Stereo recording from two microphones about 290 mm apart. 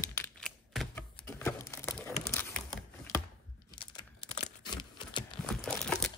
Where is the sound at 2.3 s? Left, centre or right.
Centre.